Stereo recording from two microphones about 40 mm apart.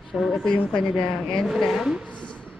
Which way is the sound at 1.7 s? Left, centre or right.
Centre.